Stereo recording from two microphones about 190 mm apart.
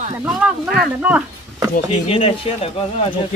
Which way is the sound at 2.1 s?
30° left (ahead or behind).